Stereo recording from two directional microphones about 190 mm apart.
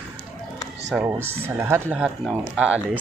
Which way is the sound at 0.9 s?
10° right (ahead or behind).